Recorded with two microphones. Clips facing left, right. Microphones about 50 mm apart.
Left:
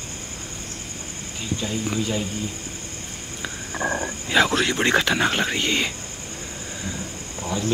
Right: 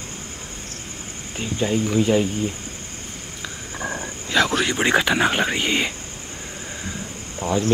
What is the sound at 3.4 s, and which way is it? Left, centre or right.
Speech, centre.